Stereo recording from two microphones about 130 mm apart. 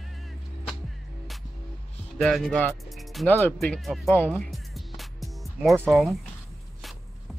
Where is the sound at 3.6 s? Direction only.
5° left (ahead or behind).